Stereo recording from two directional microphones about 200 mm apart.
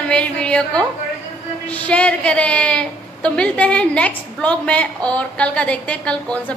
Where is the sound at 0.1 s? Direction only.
5° left (ahead or behind).